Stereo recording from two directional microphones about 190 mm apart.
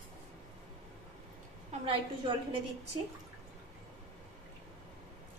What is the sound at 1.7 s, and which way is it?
Speech, 25° right (ahead or behind).